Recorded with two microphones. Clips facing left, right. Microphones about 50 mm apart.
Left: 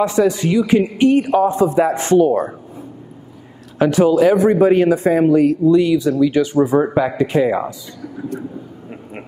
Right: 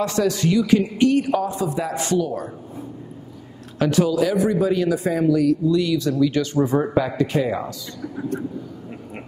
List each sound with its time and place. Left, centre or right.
0.0 s a man's voice: centre; by 2.5 s left
3.7 s speech: left
5.8 s a man's voice: left